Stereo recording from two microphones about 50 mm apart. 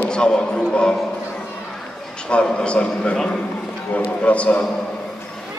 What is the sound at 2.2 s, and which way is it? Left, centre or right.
A man's voice, left.